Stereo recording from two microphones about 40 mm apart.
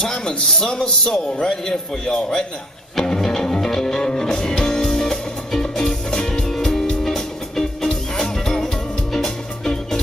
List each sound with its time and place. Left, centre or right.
0.0 s a man's voice: centre
3.6 s music: centre